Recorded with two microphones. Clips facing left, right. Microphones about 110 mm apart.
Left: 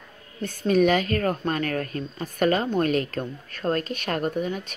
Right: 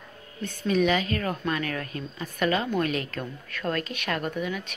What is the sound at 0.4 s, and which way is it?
A woman's voice, 45° left (ahead or behind).